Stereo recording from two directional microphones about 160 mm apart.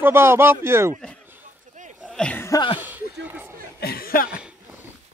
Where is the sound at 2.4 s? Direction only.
25° left (ahead or behind).